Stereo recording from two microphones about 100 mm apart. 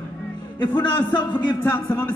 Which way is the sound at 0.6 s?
50° left (ahead or behind).